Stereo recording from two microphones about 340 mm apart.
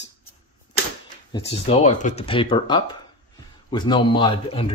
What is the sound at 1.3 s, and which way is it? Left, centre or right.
Speech, centre.